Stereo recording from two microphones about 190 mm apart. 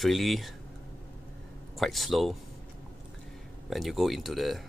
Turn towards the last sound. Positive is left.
turn(degrees=0)  # may be behind; listen again after turning